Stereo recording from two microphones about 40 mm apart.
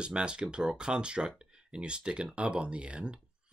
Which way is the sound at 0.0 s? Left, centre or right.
Right.